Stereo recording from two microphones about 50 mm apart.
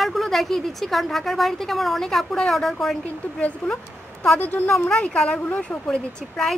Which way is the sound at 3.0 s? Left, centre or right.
Left.